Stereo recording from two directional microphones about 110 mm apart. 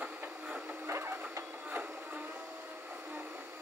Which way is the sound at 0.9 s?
25° right (ahead or behind).